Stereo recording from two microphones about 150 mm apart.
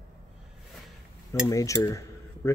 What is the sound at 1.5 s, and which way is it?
Cutlery, 20° left (ahead or behind).